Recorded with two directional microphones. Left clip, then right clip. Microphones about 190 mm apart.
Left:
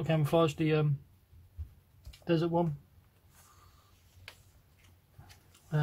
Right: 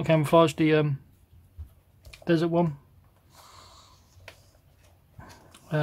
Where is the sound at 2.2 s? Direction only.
35° right (ahead or behind).